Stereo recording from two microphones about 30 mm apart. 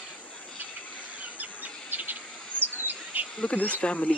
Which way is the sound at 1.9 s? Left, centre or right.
Right.